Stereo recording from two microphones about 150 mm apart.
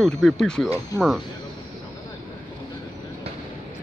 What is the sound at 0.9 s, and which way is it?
Speech, 20° left (ahead or behind).